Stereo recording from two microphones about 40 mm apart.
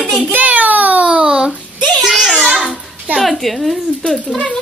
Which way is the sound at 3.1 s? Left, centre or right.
Centre.